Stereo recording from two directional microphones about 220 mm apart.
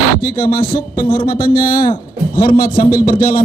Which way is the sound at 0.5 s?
40° left (ahead or behind).